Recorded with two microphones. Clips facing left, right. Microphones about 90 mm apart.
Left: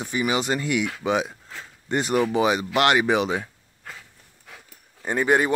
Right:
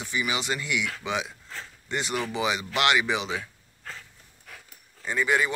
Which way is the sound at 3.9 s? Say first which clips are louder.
Even; 15° left (ahead or behind).